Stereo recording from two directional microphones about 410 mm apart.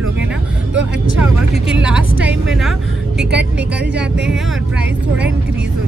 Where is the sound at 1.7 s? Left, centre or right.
Centre.